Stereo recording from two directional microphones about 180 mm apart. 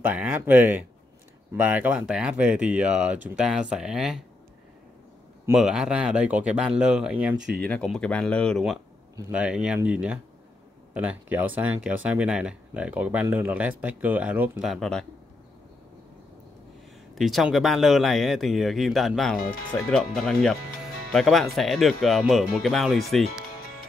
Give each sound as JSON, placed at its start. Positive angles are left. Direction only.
{"t": 0.0, "sound": "speech", "side_deg": -10}
{"t": 5.5, "sound": "speech", "side_deg": -5}
{"t": 7.3, "sound": "speech", "side_deg": -75}
{"t": 7.6, "sound": "speech", "side_deg": 5}
{"t": 10.9, "sound": "speech", "side_deg": -10}
{"t": 17.1, "sound": "speech", "side_deg": 0}